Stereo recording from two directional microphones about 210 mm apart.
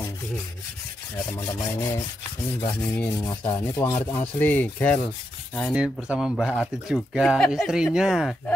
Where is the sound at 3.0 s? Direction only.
15° left (ahead or behind).